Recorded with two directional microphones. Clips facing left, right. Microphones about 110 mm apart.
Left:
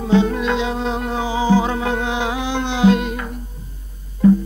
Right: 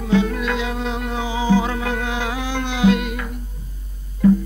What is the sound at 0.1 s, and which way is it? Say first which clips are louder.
Music: left 3 dB; 25° left (ahead or behind).